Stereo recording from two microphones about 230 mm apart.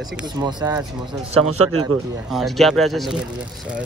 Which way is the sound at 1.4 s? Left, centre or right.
Right.